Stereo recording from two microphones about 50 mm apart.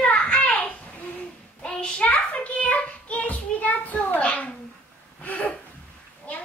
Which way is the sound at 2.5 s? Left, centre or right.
Left.